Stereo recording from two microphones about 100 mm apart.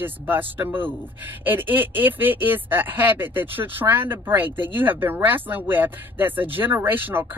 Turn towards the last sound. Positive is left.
turn(degrees=-20)  # may be behind; listen again after turning